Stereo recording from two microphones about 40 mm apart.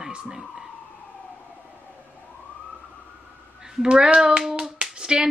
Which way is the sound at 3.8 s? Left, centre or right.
Right.